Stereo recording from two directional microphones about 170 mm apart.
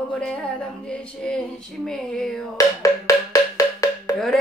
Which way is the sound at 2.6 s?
20° left (ahead or behind).